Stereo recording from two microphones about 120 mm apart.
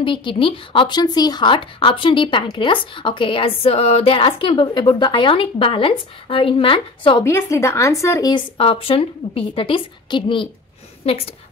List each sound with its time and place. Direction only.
0.0 s a woman's voice: 45° left (ahead or behind)
7.2 s a woman's voice: 20° left (ahead or behind)
8.3 s a woman's voice: 45° left (ahead or behind)